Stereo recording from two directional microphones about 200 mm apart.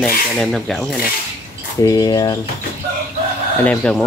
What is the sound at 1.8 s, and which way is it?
Speech, 20° left (ahead or behind).